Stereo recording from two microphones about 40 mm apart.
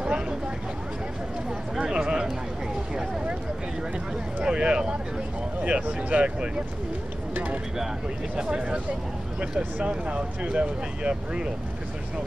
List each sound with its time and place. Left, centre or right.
0.0 s vehicle: right
1.8 s a sound: right
4.5 s a sound: right
5.6 s speech: right
8.5 s speech: right
9.8 s speech: right